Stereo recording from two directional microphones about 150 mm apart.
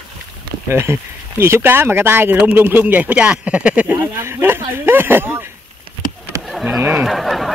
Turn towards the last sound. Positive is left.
turn(degrees=0)  # may be behind; listen again after turning